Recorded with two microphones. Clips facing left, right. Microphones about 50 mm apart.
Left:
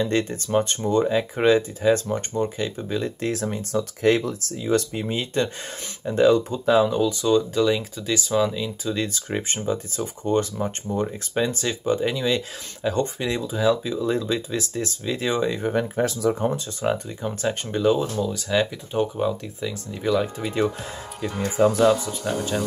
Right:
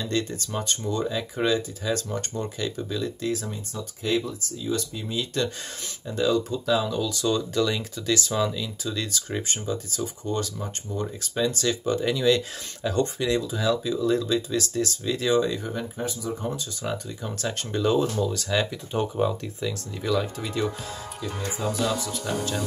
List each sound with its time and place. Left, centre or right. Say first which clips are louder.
0.0 s speech: left 5 dB; left
2.0 s speech: left 6 dB; centre
2.9 s speech: left 3 dB; left; by 8.5 s centre
8.5 s speech: left 4 dB; centre
15.6 s speech: left 8 dB; left
16.1 s speech: left 8 dB; left
16.4 s speech: left 6 dB; left
17.2 s speech: left 5 dB; centre
21.2 s speech: left 10 dB; left
22.2 s speech: left 3 dB; centre